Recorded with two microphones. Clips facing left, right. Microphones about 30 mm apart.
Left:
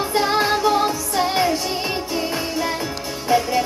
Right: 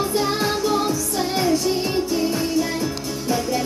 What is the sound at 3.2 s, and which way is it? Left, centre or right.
Music, left.